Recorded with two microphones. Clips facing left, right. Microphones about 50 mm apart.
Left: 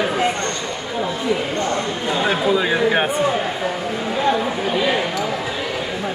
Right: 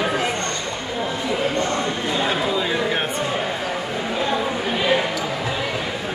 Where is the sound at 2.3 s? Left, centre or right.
Left.